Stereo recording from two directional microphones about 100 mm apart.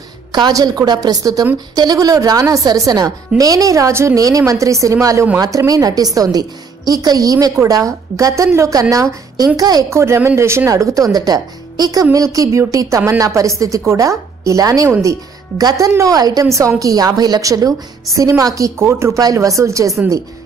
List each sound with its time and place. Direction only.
0.3 s a woman's voice: 40° right (ahead or behind)
9.8 s a woman's voice: 25° right (ahead or behind)